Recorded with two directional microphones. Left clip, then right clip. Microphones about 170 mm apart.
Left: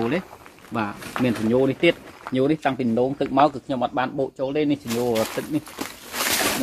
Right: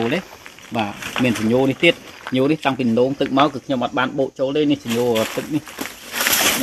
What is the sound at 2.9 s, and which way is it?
Speech, 60° right (ahead or behind).